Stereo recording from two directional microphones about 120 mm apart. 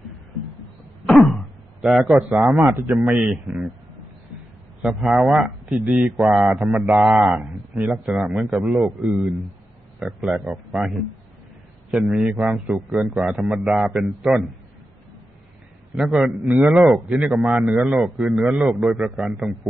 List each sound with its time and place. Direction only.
1.0 s a sound: centre (ahead or behind)
2.2 s a man's voice: 5° right (ahead or behind)
2.5 s speech: 20° right (ahead or behind)
3.1 s a man's voice: 10° right (ahead or behind)
4.8 s a man's voice: 5° right (ahead or behind)
15.9 s a man's voice: centre (ahead or behind)
16.4 s a man's voice: 10° right (ahead or behind)